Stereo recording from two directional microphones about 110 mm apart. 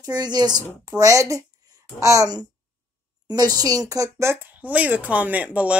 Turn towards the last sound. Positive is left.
turn(degrees=-10)  # may be behind; listen again after turning